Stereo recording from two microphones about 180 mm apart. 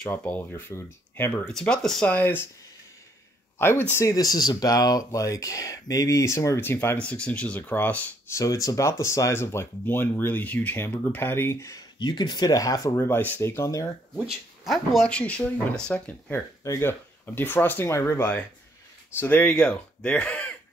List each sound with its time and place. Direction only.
0.0 s speech: 10° left (ahead or behind)
3.8 s speech: 15° left (ahead or behind)
14.1 s speech: centre (ahead or behind)